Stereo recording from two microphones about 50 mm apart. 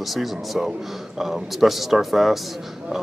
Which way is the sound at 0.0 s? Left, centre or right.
Centre.